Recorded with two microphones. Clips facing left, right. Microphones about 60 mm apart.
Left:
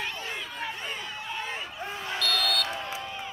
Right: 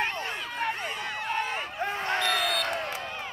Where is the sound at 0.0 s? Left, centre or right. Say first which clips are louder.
Right 4 dB; right.